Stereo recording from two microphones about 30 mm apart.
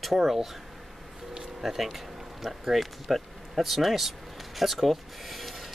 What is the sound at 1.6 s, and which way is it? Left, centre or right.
Speech, centre.